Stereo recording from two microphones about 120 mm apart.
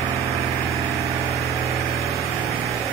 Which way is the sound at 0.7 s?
25° right (ahead or behind).